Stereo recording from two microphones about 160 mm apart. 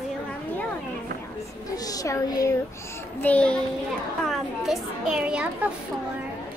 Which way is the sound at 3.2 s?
10° left (ahead or behind).